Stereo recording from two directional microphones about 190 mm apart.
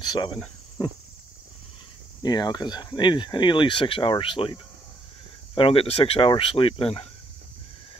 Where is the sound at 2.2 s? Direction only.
20° left (ahead or behind).